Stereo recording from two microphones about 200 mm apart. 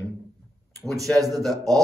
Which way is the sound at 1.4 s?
Centre (ahead or behind).